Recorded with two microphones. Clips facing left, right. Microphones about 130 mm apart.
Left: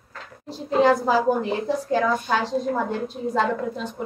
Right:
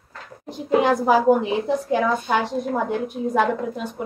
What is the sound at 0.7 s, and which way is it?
A woman's voice, 15° right (ahead or behind).